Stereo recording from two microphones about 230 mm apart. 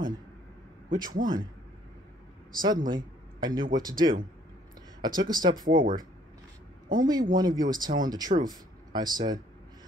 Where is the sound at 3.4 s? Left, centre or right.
Centre.